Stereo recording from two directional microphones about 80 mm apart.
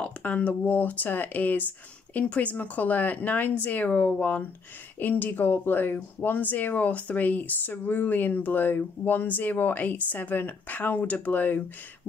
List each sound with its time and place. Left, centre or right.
0.0 s speech: centre